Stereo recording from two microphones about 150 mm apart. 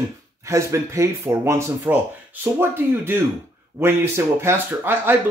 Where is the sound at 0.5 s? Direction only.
20° right (ahead or behind).